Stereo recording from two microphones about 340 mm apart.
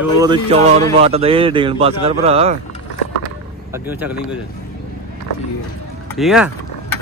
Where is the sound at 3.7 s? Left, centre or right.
Centre.